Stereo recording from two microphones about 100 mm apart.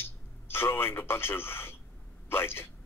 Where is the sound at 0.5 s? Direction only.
25° left (ahead or behind).